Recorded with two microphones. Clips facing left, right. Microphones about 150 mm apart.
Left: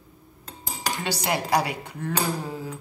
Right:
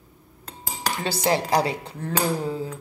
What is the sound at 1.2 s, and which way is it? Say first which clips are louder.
Speech: right 3 dB; 30° right (ahead or behind).